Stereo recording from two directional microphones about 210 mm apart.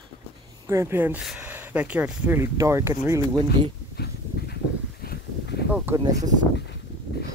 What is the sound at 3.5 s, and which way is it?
Dog, 50° left (ahead or behind).